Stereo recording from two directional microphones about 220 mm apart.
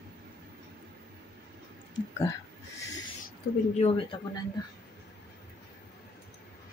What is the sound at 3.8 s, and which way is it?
Speech, 25° left (ahead or behind).